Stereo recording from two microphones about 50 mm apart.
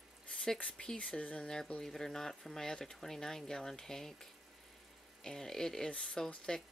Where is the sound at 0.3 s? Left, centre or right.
Centre.